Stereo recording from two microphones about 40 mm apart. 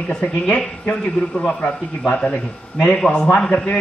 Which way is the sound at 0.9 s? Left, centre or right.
Left.